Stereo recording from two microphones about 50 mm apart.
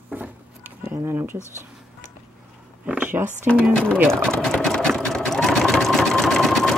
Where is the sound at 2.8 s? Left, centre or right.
Right.